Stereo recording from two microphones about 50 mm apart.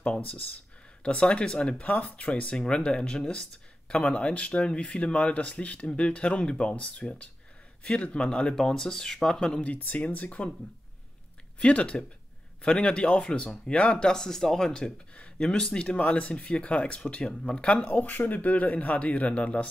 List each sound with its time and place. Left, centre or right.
1.0 s speech: centre
1.9 s speech: left
9.7 s speech: left
11.6 s speech: left